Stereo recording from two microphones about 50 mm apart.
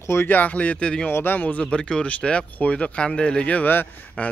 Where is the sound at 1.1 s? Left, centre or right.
Left.